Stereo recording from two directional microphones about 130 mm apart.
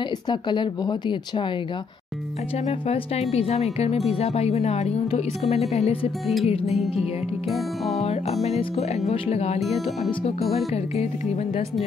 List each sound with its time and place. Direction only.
0.3 s speech: 35° left (ahead or behind)
2.6 s speech: 55° left (ahead or behind)
7.5 s speech: centre (ahead or behind)
8.0 s speech: 55° left (ahead or behind)
9.6 s speech: centre (ahead or behind)
10.5 s speech: 55° left (ahead or behind)